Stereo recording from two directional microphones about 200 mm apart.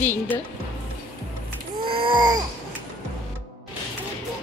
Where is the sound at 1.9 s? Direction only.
25° right (ahead or behind).